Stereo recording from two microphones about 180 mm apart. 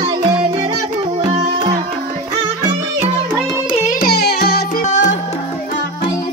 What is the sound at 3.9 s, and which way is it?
Music, 55° left (ahead or behind).